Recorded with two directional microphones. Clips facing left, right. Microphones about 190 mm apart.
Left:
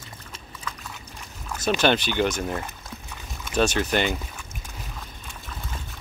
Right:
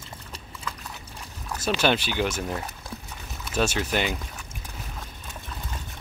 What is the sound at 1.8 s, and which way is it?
Speech, 5° right (ahead or behind).